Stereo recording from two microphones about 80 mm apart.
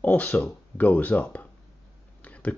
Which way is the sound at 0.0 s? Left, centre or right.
Left.